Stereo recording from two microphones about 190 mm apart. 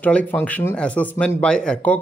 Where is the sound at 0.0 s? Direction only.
10° left (ahead or behind).